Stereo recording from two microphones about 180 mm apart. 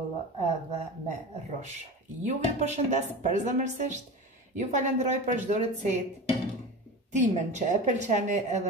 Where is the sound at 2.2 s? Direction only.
40° right (ahead or behind).